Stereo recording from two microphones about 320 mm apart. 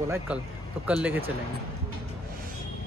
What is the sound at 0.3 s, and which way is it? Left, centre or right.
Speech, centre.